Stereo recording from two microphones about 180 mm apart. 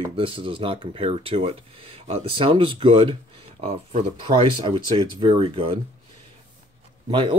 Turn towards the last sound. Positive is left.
turn(degrees=-25)  # may be behind; listen again after turning